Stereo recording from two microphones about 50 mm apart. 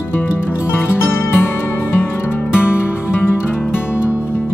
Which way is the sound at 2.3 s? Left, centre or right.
Left.